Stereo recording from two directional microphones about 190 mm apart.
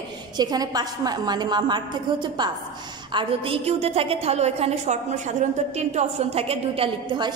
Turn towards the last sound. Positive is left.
turn(degrees=-25)  # may be behind; listen again after turning